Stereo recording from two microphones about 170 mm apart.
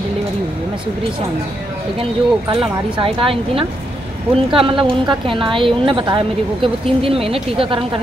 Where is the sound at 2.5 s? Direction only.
35° right (ahead or behind).